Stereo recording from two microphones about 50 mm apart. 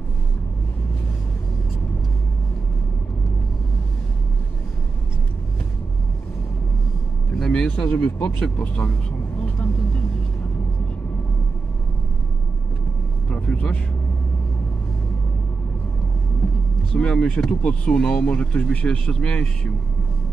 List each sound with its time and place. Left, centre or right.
7.3 s vehicle: centre
7.7 s speech: left
9.4 s vehicle: left
13.3 s vehicle: left
16.9 s speech: centre